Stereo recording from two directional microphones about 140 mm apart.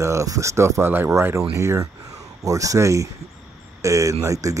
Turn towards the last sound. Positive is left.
turn(degrees=-25)  # may be behind; listen again after turning